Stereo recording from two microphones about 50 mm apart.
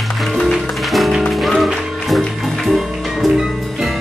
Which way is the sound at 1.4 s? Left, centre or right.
Centre.